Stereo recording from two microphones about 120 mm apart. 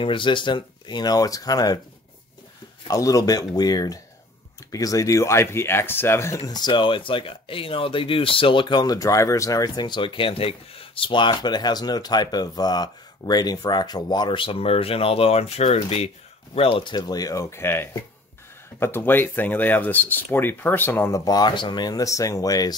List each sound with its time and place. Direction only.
0.0 s speech: 45° left (ahead or behind)
2.9 s speech: 30° left (ahead or behind); by 16.1 s 60° left (ahead or behind)
16.5 s speech: 45° left (ahead or behind); by 21.1 s 15° left (ahead or behind)
21.1 s speech: 30° left (ahead or behind)